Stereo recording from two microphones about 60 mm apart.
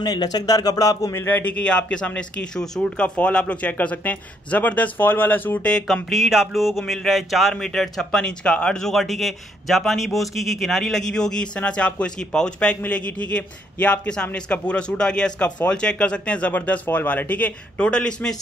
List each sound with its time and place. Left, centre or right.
0.0 s speech: left
1.1 s a man's voice: left
1.4 s a man's voice: left
5.6 s a man's voice: centre
6.0 s a man's voice: centre